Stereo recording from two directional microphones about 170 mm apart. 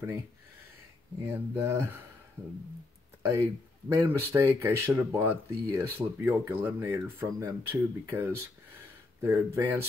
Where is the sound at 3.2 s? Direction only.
15° right (ahead or behind).